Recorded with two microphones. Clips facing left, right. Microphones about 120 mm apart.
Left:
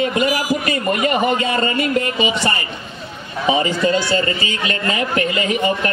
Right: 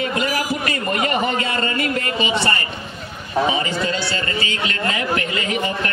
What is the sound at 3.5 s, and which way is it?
A man's voice, 20° left (ahead or behind).